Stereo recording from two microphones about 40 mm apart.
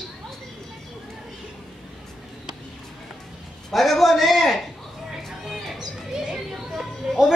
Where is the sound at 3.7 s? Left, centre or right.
Centre.